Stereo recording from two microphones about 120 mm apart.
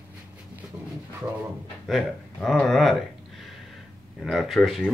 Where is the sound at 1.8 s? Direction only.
Centre (ahead or behind).